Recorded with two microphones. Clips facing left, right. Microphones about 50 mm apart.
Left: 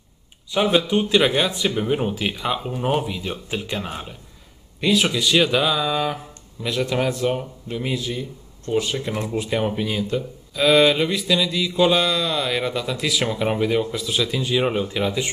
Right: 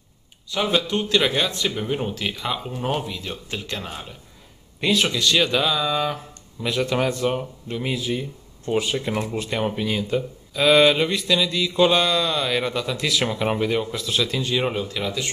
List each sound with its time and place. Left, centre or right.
0.5 s speech: centre
4.7 s speech: centre
14.8 s speech: left